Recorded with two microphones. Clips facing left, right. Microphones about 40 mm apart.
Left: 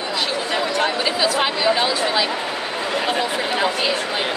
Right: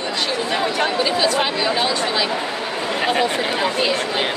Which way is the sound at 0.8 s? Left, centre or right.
Centre.